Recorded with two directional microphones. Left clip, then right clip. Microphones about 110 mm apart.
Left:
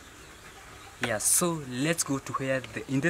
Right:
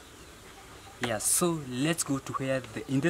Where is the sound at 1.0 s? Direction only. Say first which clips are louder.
Left 1 dB; centre (ahead or behind).